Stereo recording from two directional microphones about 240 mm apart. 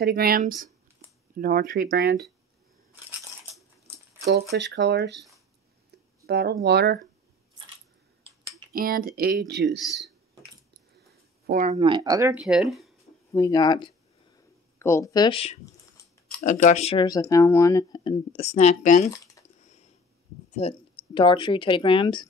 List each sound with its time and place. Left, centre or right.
0.0 s speech: right
4.3 s speech: right
6.2 s speech: right
8.7 s speech: right
9.8 s speech: centre
10.7 s a sound: right; by 12.9 s centre
13.3 s speech: centre
16.0 s a sound: centre
16.4 s speech: left
19.0 s a sound: centre
20.5 s speech: left